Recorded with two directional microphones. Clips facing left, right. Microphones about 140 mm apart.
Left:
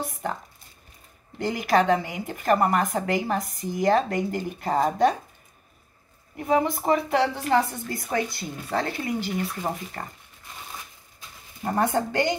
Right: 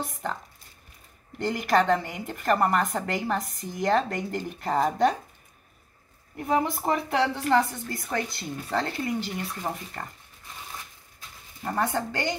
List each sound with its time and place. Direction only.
0.0 s a sound: 10° left (ahead or behind)
1.4 s a woman's voice: 10° left (ahead or behind)
6.3 s a woman's voice: centre (ahead or behind)
11.6 s a woman's voice: 15° left (ahead or behind)